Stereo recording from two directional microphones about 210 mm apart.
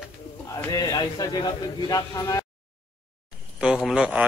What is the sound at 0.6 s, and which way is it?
Speech, 15° left (ahead or behind).